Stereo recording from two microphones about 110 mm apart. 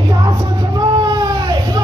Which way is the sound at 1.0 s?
35° right (ahead or behind).